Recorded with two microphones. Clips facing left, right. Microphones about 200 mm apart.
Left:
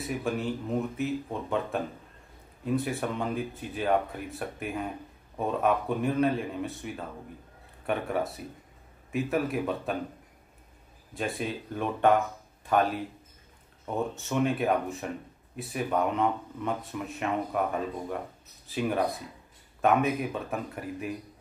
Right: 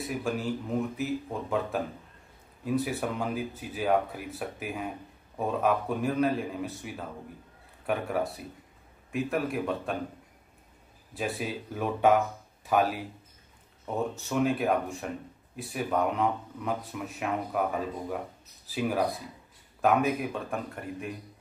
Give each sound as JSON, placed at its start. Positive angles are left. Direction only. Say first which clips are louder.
{"t": 0.0, "sound": "speech", "louder": "left 1 dB", "side_deg": 0}
{"t": 11.1, "sound": "speech", "louder": "even", "side_deg": 0}